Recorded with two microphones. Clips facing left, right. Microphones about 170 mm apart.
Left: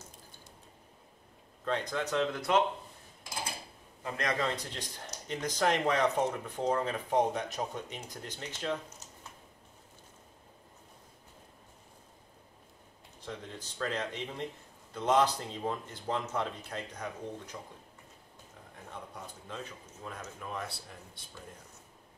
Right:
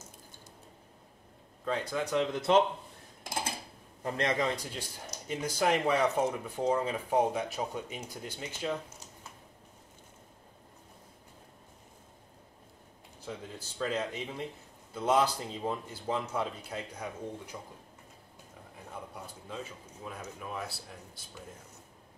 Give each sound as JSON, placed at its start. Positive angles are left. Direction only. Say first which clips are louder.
{"t": 1.6, "sound": "speech", "louder": "right 1 dB", "side_deg": -5}
{"t": 4.0, "sound": "a man's voice", "louder": "right 3 dB", "side_deg": -25}
{"t": 4.4, "sound": "speech", "louder": "right 2 dB", "side_deg": -10}
{"t": 13.2, "sound": "speech", "louder": "right 1 dB", "side_deg": -10}
{"t": 18.9, "sound": "speech", "louder": "right 1 dB", "side_deg": -5}